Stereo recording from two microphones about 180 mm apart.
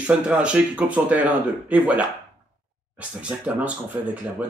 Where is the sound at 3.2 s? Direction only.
10° right (ahead or behind).